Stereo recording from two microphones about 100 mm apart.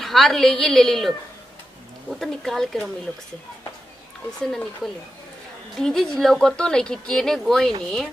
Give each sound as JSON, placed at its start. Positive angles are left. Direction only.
{"t": 0.0, "sound": "a woman's voice", "side_deg": 5}
{"t": 4.4, "sound": "a woman's voice", "side_deg": 5}